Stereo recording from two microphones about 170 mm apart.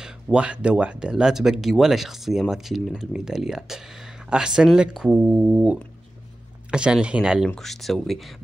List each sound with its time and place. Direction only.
0.0 s speech: 5° right (ahead or behind)